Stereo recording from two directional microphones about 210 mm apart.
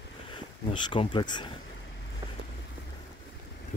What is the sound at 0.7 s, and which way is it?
Speech, 25° left (ahead or behind).